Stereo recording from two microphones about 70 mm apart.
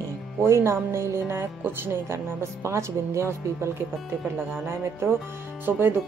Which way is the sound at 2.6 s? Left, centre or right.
Right.